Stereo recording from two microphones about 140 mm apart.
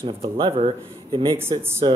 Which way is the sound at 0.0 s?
40° right (ahead or behind).